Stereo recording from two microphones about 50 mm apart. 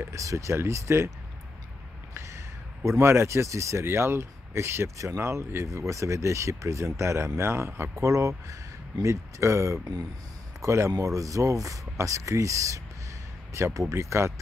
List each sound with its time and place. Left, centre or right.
0.1 s speech: right
0.6 s speech: right
2.1 s a sound: right
3.0 s speech: right
3.8 s speech: right